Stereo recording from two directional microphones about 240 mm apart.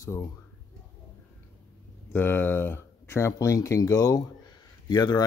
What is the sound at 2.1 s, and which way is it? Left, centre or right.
Speech, centre.